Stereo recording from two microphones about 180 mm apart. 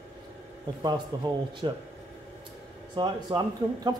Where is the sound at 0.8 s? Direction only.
25° right (ahead or behind).